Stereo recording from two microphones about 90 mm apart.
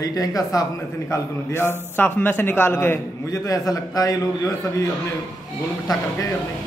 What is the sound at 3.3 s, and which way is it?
Speech, 40° left (ahead or behind).